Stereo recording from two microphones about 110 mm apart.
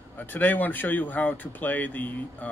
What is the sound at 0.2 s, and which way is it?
Speech, 15° left (ahead or behind).